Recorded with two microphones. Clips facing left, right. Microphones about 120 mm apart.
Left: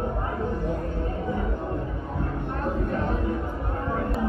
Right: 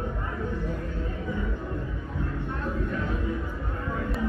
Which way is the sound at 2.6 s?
40° left (ahead or behind).